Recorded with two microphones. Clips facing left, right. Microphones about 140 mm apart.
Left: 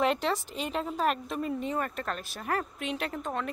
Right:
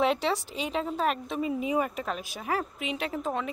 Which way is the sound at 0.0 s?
Centre (ahead or behind).